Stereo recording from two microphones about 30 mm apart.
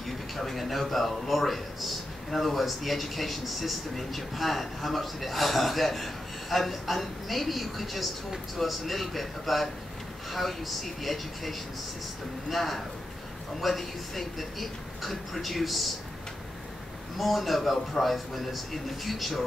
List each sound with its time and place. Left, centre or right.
0.0 s a man's voice: centre
17.2 s a man's voice: centre